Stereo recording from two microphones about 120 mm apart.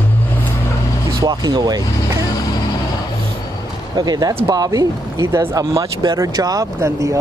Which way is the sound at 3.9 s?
35° right (ahead or behind).